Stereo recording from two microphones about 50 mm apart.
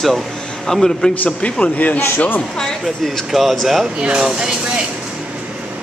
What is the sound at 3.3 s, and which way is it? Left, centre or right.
Speech, centre.